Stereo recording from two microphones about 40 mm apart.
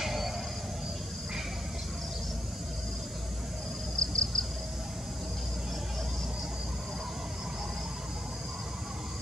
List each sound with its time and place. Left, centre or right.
0.0 s train: centre
3.9 s cricket: left